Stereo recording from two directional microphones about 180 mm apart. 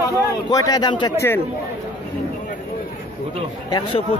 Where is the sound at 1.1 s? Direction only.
15° left (ahead or behind).